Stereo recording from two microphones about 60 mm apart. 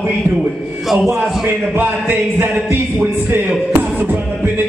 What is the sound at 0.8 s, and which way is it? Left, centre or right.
Speech, centre.